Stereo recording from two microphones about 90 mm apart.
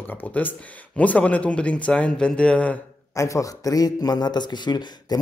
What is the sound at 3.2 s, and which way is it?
A man's voice, 35° left (ahead or behind).